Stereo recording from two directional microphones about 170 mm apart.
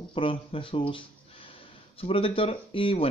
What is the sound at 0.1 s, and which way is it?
A man's voice, 30° left (ahead or behind).